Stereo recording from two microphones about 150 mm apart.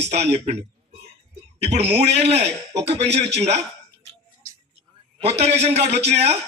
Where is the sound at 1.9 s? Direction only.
45° right (ahead or behind).